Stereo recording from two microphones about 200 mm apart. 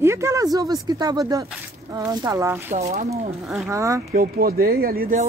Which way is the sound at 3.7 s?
15° right (ahead or behind).